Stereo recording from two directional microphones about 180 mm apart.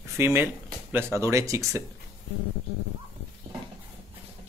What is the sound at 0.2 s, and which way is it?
Speech, 15° right (ahead or behind).